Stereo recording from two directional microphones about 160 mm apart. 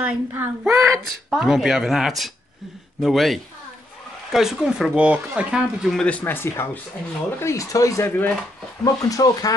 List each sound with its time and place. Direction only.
0.0 s speech: 15° right (ahead or behind)
1.3 s speech: centre (ahead or behind); by 9.5 s 25° left (ahead or behind)